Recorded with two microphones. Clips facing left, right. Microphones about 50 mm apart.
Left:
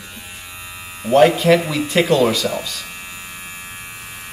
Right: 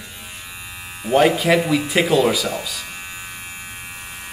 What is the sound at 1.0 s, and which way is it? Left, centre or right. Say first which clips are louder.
Speech: left 3 dB; centre.